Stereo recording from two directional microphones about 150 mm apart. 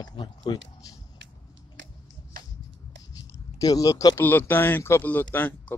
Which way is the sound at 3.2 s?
25° left (ahead or behind).